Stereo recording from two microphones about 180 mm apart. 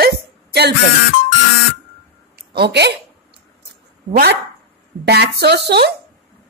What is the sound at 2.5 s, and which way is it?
Speech, 65° right (ahead or behind).